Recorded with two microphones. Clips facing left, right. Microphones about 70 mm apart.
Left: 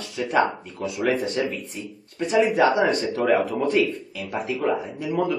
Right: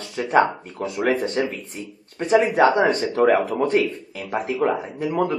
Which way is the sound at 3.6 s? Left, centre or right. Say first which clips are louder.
Right 1 dB; right.